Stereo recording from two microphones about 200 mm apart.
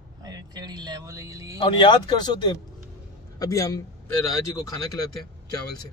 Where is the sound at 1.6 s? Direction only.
25° left (ahead or behind).